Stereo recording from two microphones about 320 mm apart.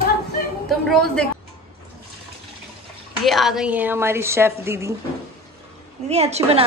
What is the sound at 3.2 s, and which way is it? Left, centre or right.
A woman's voice, centre.